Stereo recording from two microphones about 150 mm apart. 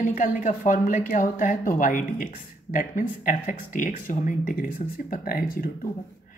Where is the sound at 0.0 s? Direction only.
60° left (ahead or behind); by 5.7 s 75° left (ahead or behind).